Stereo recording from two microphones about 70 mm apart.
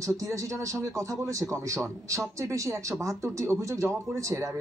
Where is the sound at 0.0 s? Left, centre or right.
Right.